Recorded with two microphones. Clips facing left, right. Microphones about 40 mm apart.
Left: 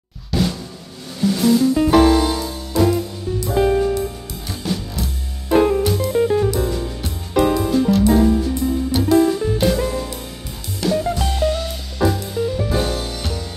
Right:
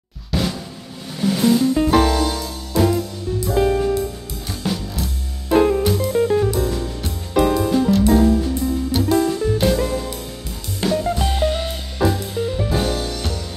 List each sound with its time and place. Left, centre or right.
0.3 s drum: centre
1.2 s music: centre
1.8 s music: centre
2.8 s music: centre
11.3 s music: right
12.0 s music: centre